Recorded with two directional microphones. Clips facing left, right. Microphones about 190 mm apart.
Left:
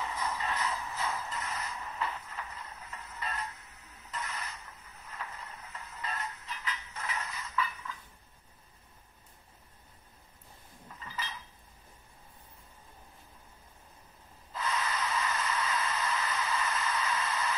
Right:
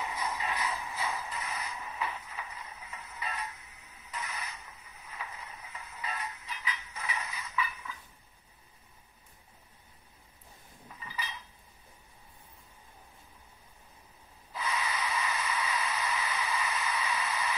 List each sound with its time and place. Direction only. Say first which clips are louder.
0.0 s shuffle: even; 10° right (ahead or behind)
3.1 s music: even; 10° right (ahead or behind)
4.1 s a sound: even; 15° right (ahead or behind)
4.8 s mechanisms: even; centre (ahead or behind)
5.4 s a sound: even; 5° right (ahead or behind)
6.5 s mechanisms: even; 10° right (ahead or behind)
11.0 s cutlery: even; 10° right (ahead or behind)
14.5 s snort: left 1 dB; 5° right (ahead or behind)
15.1 s a sound: left 1 dB; 10° right (ahead or behind)